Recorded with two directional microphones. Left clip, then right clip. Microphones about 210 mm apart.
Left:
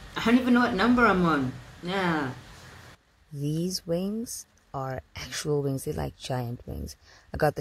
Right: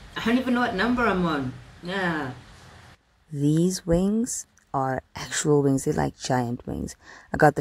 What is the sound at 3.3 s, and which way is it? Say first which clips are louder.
Speech: right 8 dB; 45° right (ahead or behind).